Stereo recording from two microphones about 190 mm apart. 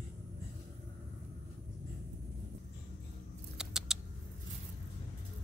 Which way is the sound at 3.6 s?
5° right (ahead or behind).